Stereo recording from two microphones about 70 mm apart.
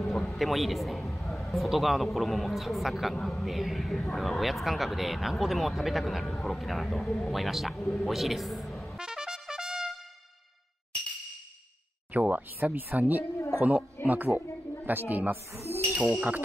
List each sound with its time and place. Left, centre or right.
0.0 s a man's voice: centre
8.9 s trumpet: centre
12.1 s a man's voice: right
15.5 s speech: right